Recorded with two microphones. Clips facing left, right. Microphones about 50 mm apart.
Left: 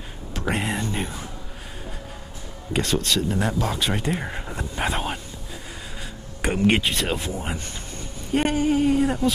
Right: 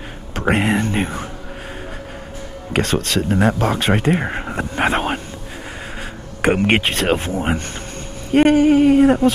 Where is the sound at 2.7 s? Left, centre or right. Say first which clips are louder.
Right 4 dB; right.